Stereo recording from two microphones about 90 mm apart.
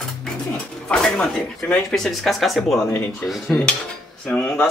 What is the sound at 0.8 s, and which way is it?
Speech, 10° left (ahead or behind).